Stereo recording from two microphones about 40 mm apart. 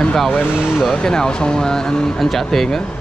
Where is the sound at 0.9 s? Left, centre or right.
Centre.